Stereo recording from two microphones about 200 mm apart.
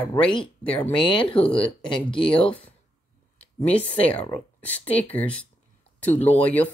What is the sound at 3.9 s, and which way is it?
Speech, 5° left (ahead or behind).